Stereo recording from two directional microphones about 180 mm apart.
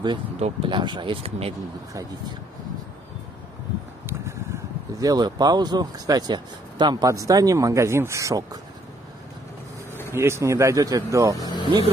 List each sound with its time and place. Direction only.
0.0 s speech: 30° right (ahead or behind)
4.0 s speech: 15° right (ahead or behind)
10.1 s speech: 15° right (ahead or behind)
11.4 s speech: 25° left (ahead or behind)